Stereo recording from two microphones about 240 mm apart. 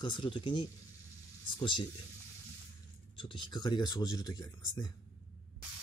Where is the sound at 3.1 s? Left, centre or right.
Left.